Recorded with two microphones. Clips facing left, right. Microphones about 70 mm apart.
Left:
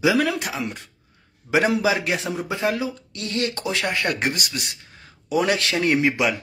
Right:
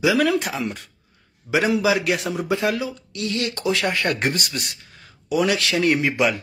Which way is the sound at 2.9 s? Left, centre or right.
Left.